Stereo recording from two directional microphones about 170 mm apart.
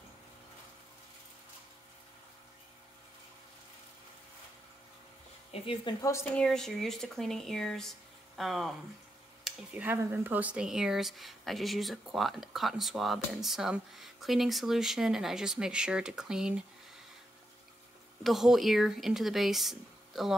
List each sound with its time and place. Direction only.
5.5 s speech: 30° left (ahead or behind)
6.3 s speech: 5° left (ahead or behind)
18.2 s speech: centre (ahead or behind)